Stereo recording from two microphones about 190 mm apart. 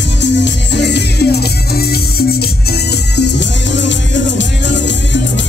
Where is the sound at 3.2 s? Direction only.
65° left (ahead or behind).